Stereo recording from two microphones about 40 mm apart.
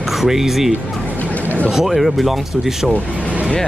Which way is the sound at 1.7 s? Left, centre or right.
Centre.